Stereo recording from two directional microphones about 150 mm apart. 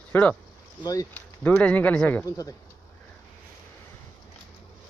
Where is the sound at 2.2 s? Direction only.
25° left (ahead or behind).